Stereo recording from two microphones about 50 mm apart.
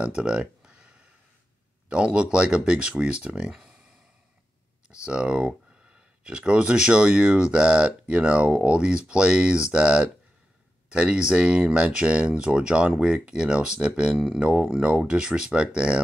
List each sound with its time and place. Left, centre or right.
0.0 s a sound: centre
1.9 s speech: right
5.0 s speech: centre